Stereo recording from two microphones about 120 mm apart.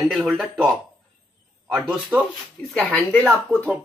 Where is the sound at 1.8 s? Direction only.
15° right (ahead or behind).